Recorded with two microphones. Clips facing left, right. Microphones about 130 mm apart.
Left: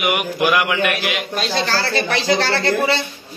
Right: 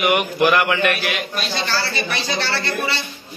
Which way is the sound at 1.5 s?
90° left.